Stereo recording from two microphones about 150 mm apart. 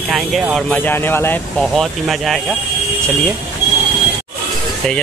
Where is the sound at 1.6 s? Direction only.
Centre (ahead or behind).